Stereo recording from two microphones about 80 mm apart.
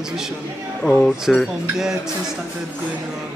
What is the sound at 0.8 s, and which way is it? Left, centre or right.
Speech, centre.